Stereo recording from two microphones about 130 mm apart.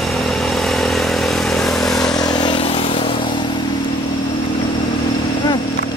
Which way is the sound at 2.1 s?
35° left (ahead or behind).